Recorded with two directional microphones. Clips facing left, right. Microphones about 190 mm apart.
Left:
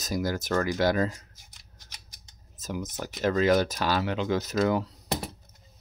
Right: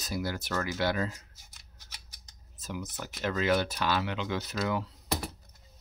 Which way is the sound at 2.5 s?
40° left (ahead or behind).